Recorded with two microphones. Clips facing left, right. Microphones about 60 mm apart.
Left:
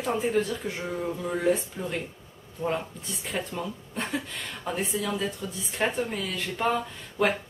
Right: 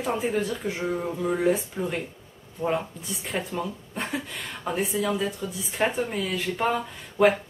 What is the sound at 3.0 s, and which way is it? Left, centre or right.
Speech, centre.